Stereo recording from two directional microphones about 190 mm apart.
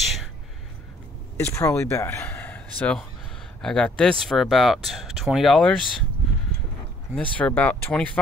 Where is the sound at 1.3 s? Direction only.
15° left (ahead or behind).